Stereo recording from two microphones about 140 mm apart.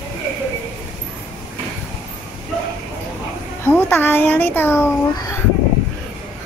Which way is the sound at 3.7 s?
15° left (ahead or behind).